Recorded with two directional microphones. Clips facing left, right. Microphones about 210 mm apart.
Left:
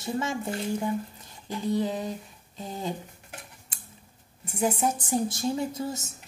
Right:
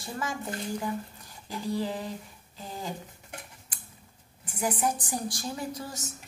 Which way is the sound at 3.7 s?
25° left (ahead or behind).